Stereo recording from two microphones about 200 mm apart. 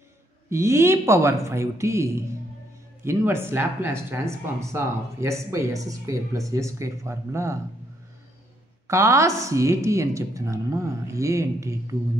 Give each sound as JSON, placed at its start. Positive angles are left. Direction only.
{"t": 0.5, "sound": "speech", "side_deg": -15}
{"t": 8.8, "sound": "speech", "side_deg": -15}